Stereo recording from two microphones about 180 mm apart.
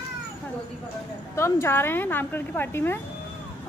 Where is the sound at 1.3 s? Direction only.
15° left (ahead or behind).